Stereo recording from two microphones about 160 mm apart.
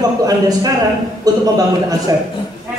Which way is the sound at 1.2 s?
20° right (ahead or behind).